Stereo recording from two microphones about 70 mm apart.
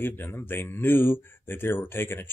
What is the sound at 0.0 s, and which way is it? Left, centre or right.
Speech, left.